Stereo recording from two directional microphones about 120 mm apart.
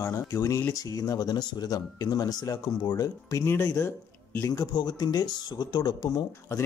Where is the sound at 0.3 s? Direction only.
25° left (ahead or behind).